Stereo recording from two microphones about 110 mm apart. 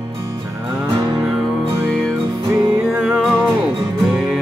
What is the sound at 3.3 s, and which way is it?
Music, 5° left (ahead or behind).